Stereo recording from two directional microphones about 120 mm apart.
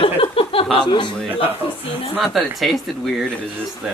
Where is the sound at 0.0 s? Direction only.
50° left (ahead or behind).